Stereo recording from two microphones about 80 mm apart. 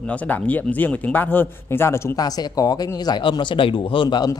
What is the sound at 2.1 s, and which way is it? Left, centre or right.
Speech, left.